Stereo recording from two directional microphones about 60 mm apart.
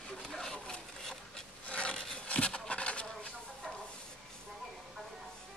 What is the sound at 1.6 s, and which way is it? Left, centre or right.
Rub, centre.